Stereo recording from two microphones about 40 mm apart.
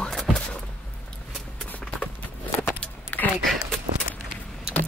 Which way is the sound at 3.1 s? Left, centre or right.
Left.